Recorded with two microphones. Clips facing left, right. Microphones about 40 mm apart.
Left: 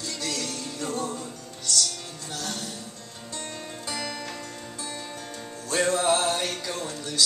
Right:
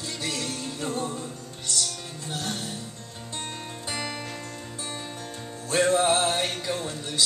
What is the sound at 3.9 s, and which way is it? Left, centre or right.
Music, right.